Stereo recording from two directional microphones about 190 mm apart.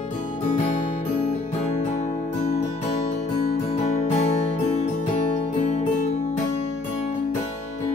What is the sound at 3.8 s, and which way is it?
Music, 35° left (ahead or behind).